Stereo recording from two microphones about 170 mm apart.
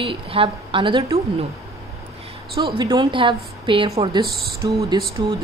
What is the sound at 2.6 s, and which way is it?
Speech, 25° right (ahead or behind).